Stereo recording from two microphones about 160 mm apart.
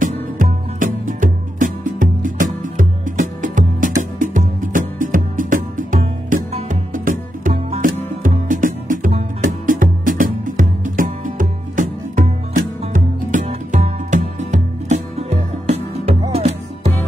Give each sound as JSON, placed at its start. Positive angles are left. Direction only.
{"t": 0.0, "sound": "music", "side_deg": -55}